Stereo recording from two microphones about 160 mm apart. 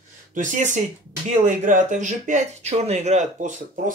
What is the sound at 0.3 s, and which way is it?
Speech, 55° right (ahead or behind).